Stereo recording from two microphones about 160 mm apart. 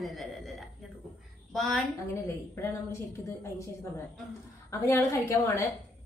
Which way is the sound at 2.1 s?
15° left (ahead or behind).